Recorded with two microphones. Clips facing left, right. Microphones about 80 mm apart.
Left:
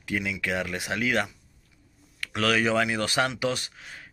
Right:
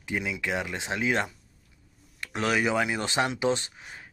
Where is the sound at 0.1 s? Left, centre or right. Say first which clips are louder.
Left 1 dB; right.